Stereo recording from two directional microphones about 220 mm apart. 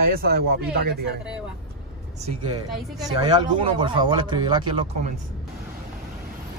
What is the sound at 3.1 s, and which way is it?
Speech, 20° right (ahead or behind).